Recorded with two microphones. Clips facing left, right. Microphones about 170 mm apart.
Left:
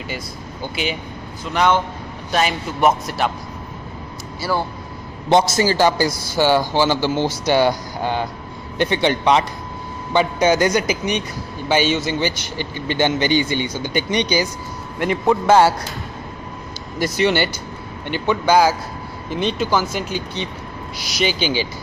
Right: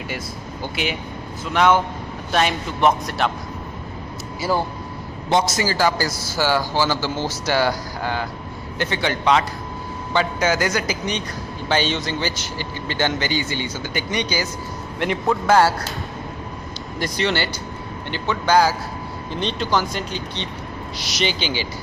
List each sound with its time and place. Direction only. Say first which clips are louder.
1.5 s a man's voice: right 1 dB; centre (ahead or behind)
5.3 s a man's voice: left 4 dB; 30° left (ahead or behind)
17.0 s a man's voice: left 5 dB; 15° left (ahead or behind)